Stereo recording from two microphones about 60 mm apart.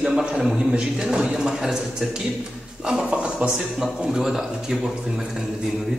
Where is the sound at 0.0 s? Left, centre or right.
Centre.